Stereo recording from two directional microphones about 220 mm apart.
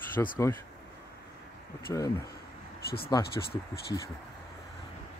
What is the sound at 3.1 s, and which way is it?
Speech, 20° left (ahead or behind).